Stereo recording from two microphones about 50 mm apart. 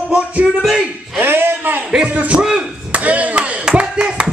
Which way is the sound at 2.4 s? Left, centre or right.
Centre.